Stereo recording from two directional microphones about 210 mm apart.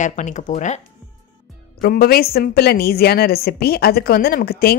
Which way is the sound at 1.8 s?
45° left (ahead or behind).